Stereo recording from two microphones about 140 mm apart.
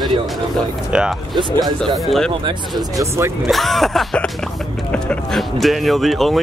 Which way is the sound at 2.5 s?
30° right (ahead or behind).